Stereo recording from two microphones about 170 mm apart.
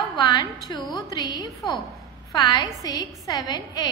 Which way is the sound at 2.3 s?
25° left (ahead or behind).